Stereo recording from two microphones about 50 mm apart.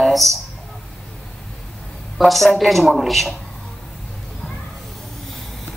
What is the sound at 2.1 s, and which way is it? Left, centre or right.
A woman's voice, centre.